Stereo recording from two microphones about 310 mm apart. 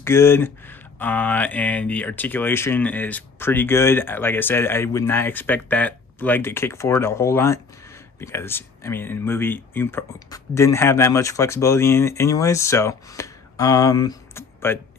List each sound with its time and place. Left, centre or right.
0.0 s speech: centre